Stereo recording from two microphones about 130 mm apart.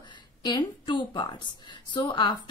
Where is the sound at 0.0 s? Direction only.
35° left (ahead or behind).